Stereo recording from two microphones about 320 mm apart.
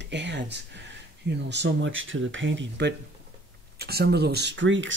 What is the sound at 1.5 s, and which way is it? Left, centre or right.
Speech, right.